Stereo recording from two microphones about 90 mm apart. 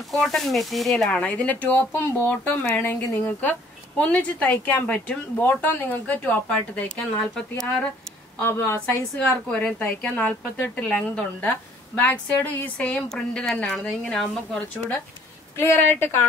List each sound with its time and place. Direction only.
0.1 s speech: 5° left (ahead or behind)
8.4 s a woman's voice: 25° left (ahead or behind)
9.5 s speech: 15° left (ahead or behind)
12.7 s speech: 10° left (ahead or behind)
14.8 s a woman's voice: 25° left (ahead or behind)